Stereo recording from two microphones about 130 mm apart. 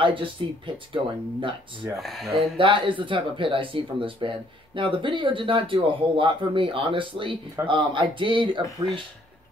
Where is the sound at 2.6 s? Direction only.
40° right (ahead or behind).